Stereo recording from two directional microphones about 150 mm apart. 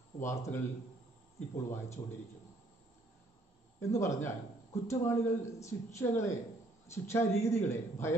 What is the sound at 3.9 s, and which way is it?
A man's voice, 20° left (ahead or behind).